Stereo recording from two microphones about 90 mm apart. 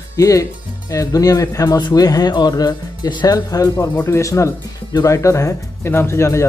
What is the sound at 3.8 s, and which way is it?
Speech, 30° left (ahead or behind).